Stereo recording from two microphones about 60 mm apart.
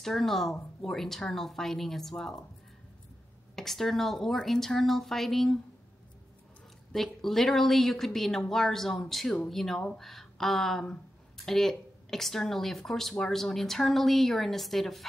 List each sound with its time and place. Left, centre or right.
0.0 s speech: centre
3.5 s speech: centre
6.9 s speech: centre